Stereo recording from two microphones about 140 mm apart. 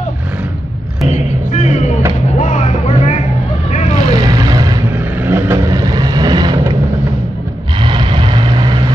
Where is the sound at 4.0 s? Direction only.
25° right (ahead or behind).